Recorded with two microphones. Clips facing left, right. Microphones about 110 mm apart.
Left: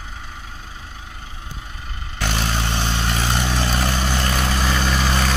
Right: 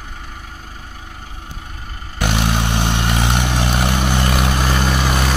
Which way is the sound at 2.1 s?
15° right (ahead or behind).